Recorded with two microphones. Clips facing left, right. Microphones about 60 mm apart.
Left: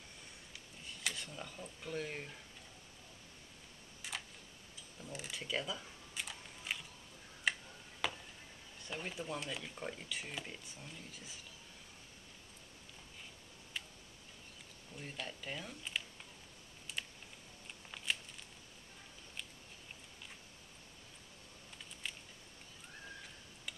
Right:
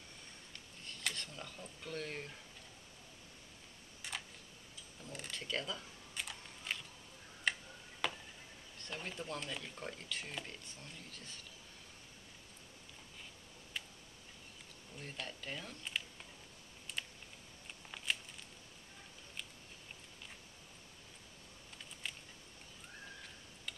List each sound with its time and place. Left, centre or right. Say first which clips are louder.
0.5 s speech: even; centre
4.0 s tick: even; centre
5.0 s camera: left 1 dB; centre
7.5 s tick-tock: left 1 dB; centre
8.0 s a sound: even; centre
8.7 s speech: left 1 dB; centre
15.0 s speech: left 1 dB; centre
17.0 s typing: even; centre
17.9 s a sound: right 1 dB; centre
22.0 s a sound: even; centre